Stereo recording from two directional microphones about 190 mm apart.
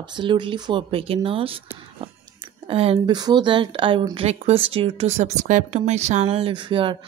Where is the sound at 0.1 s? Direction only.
25° right (ahead or behind).